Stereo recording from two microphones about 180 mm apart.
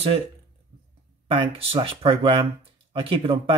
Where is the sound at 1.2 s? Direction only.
30° right (ahead or behind).